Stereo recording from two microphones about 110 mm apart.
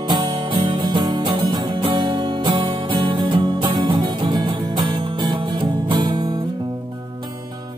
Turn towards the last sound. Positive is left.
turn(degrees=-40)  # may be behind; listen again after turning